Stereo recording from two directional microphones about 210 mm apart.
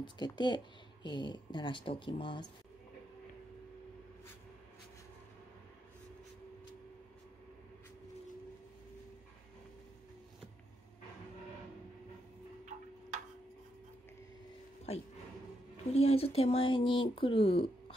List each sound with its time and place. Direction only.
0.0 s speech: 20° left (ahead or behind)
14.9 s speech: 25° left (ahead or behind)